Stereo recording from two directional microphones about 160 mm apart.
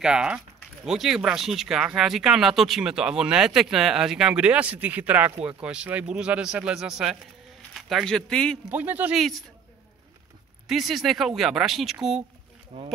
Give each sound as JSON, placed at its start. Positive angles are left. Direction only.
{"t": 0.0, "sound": "speech", "side_deg": -5}
{"t": 8.6, "sound": "speech", "side_deg": -10}
{"t": 10.7, "sound": "speech", "side_deg": 0}
{"t": 12.7, "sound": "speech", "side_deg": -35}